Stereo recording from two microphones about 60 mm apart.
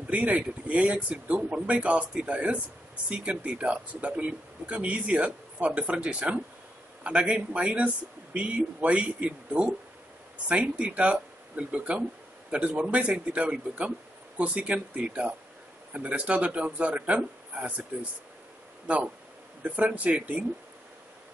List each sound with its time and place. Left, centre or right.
0.1 s a man's voice: right
19.6 s speech: right